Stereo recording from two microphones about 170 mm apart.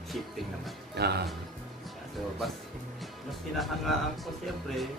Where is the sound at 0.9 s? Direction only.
70° right (ahead or behind).